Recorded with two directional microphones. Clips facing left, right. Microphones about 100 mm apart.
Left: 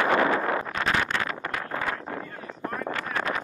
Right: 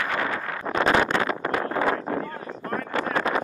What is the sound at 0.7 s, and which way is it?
Vehicle, 25° right (ahead or behind).